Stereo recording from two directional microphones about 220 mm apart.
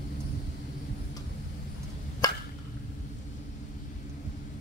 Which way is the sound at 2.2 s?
15° left (ahead or behind).